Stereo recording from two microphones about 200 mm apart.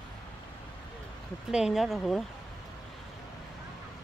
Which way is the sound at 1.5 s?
Centre (ahead or behind).